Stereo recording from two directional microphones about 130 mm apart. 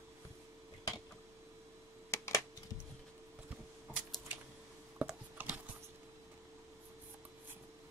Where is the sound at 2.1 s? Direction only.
20° left (ahead or behind).